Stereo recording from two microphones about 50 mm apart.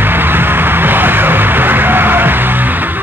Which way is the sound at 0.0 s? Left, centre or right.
Right.